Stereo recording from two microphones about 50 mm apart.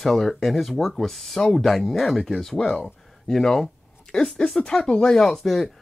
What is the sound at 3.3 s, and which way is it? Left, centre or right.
Speech, centre.